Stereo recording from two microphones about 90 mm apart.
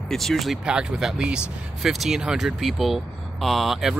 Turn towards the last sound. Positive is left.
turn(degrees=-5)  # may be behind; listen again after turning